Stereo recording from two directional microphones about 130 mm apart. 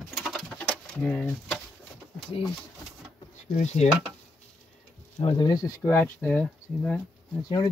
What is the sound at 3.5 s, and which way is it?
Speech, 60° left (ahead or behind).